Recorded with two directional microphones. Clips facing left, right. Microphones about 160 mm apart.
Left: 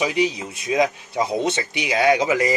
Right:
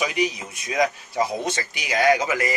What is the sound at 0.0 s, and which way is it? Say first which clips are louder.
A man's voice: left 3 dB; 30° left (ahead or behind).